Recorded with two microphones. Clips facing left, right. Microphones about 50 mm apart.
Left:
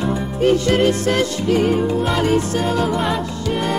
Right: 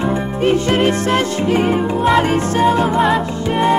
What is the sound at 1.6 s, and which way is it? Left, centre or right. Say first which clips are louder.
Music: even; right.